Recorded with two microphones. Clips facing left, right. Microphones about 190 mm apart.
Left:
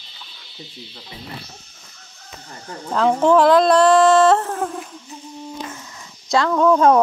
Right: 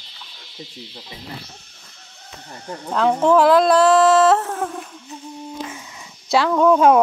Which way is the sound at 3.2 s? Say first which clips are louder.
Left 1 dB; 5° right (ahead or behind).